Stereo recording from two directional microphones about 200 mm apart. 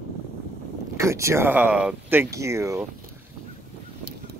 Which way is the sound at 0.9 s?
15° right (ahead or behind).